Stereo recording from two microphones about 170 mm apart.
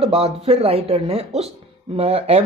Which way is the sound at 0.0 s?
35° right (ahead or behind).